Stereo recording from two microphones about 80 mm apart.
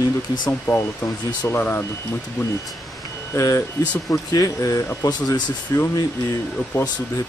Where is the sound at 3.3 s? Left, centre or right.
Left.